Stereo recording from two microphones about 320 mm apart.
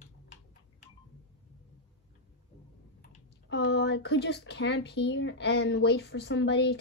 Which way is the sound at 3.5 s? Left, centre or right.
Left.